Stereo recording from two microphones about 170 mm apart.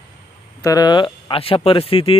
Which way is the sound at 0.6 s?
25° left (ahead or behind).